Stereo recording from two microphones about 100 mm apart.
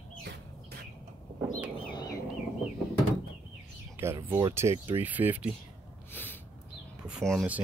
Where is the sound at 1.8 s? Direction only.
55° left (ahead or behind).